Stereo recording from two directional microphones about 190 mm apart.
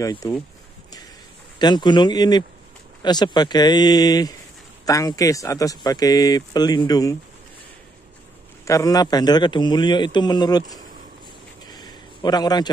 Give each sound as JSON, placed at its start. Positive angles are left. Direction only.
{"t": 0.0, "sound": "speech", "side_deg": 20}
{"t": 1.6, "sound": "speech", "side_deg": 25}
{"t": 8.6, "sound": "speech", "side_deg": 15}
{"t": 11.6, "sound": "a sound", "side_deg": 20}